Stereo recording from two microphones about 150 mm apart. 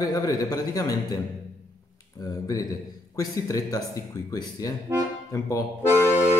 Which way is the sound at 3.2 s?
25° left (ahead or behind).